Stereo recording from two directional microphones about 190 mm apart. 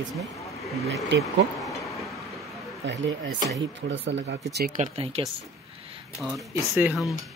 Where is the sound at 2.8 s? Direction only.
70° right (ahead or behind).